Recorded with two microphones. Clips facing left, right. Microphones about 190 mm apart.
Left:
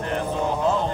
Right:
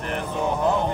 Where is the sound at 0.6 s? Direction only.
15° right (ahead or behind).